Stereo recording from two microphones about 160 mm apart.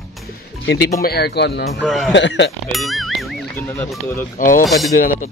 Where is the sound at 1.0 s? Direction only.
80° left.